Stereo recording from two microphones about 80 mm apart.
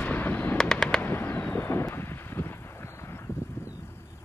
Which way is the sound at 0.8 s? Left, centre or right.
Left.